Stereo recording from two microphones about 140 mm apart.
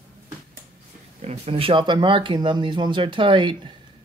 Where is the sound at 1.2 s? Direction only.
50° right (ahead or behind).